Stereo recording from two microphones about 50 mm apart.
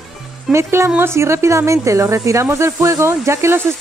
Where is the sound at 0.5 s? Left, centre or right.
Right.